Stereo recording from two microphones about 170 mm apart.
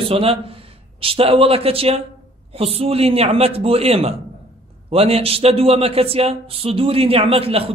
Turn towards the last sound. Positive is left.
turn(degrees=-35)  # may be behind; listen again after turning